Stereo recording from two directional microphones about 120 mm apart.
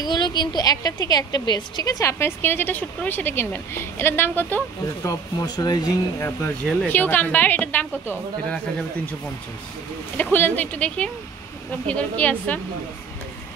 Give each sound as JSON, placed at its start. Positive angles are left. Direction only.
{"t": 0.0, "sound": "a sound", "side_deg": 40}
{"t": 0.6, "sound": "a woman's voice", "side_deg": 30}
{"t": 5.0, "sound": "speech", "side_deg": 30}
{"t": 6.6, "sound": "a woman's voice", "side_deg": 10}
{"t": 10.1, "sound": "a woman's voice", "side_deg": 15}